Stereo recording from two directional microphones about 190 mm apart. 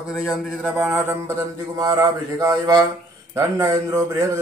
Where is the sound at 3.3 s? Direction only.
15° right (ahead or behind).